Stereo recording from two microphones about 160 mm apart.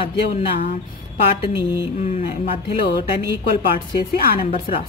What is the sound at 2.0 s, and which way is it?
Speech, 45° left (ahead or behind).